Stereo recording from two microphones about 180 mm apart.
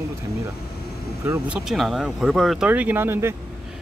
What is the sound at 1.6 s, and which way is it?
Speech, centre (ahead or behind).